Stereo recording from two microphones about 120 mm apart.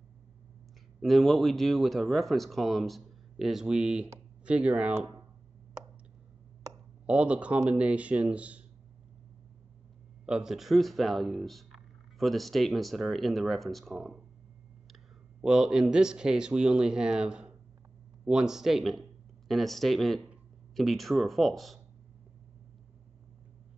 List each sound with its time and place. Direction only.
1.0 s a man's voice: centre (ahead or behind)
7.1 s a man's voice: 10° right (ahead or behind)
10.2 s speech: 5° right (ahead or behind)
15.4 s a man's voice: 5° right (ahead or behind)